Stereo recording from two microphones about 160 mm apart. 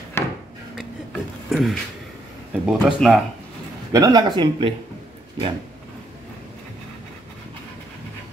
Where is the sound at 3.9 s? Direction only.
20° right (ahead or behind).